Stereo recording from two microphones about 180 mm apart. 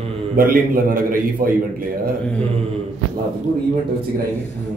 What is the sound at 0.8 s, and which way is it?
Speech, 50° right (ahead or behind).